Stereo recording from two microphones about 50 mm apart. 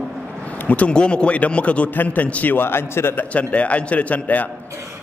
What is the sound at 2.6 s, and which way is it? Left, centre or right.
Speech, left.